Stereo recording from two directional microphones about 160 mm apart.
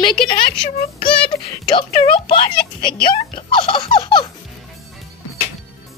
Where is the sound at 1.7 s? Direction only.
30° left (ahead or behind).